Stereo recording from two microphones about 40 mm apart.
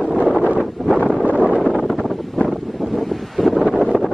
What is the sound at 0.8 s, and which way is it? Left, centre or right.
Wind noise, centre.